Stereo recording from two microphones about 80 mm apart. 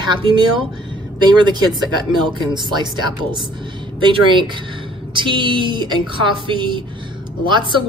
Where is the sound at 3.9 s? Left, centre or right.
Right.